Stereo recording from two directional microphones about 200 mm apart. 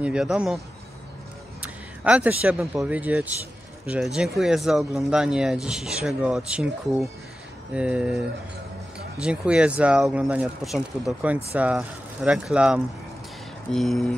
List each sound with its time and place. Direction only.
0.0 s speech: 5° right (ahead or behind)
2.0 s speech: 5° right (ahead or behind)
9.2 s speech: 5° right (ahead or behind)